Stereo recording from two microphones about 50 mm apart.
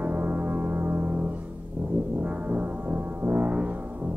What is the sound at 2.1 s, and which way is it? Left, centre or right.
Music, right.